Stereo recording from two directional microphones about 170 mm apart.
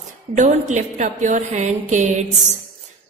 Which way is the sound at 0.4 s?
45° right (ahead or behind).